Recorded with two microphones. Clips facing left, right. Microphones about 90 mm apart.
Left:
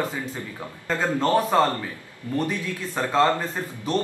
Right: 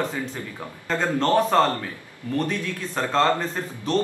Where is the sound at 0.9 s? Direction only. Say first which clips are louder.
Even; 5° left (ahead or behind).